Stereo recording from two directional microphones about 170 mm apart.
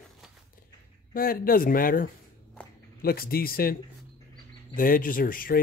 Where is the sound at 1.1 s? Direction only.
60° left (ahead or behind).